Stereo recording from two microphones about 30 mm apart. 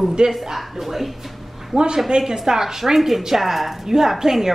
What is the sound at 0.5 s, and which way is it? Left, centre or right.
Speech, centre.